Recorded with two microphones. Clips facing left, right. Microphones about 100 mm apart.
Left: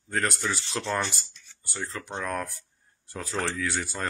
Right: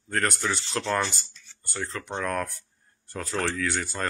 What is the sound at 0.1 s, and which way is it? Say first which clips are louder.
Speech: right 1 dB; centre (ahead or behind).